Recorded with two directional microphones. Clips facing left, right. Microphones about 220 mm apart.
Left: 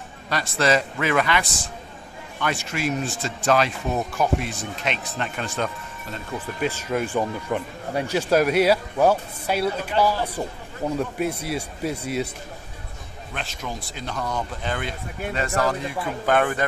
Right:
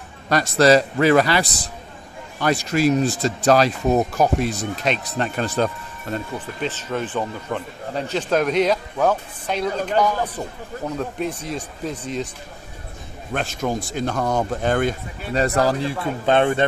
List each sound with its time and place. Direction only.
0.3 s speech: 40° right (ahead or behind)
6.4 s a man's voice: 10° left (ahead or behind)
13.3 s speech: 50° right (ahead or behind); by 16.6 s 25° right (ahead or behind)